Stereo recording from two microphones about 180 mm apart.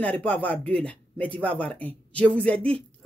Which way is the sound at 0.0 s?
5° left (ahead or behind).